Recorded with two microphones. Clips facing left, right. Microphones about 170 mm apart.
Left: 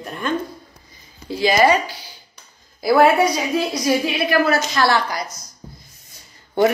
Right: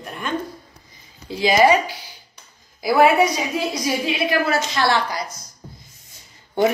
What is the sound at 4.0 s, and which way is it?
A woman's voice, 25° right (ahead or behind).